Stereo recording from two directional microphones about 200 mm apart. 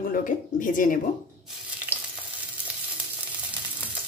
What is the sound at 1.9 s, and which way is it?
Frying, 10° right (ahead or behind).